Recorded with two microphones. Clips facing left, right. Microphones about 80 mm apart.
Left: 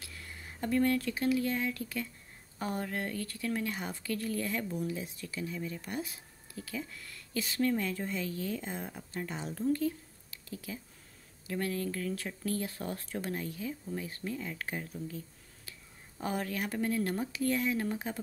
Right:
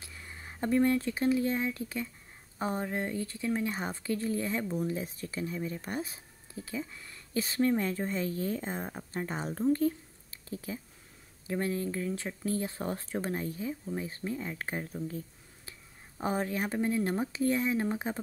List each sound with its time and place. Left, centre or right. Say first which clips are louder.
0.0 s speech: right 1 dB; right
6.5 s a woman's voice: right 2 dB; right
15.0 s a sound: right 3 dB; right
16.2 s speech: right 3 dB; right